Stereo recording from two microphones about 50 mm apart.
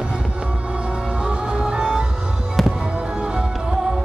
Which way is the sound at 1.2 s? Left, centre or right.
Centre.